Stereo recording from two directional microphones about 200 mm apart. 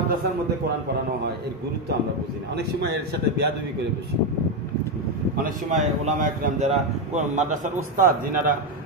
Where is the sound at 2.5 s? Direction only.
55° right (ahead or behind).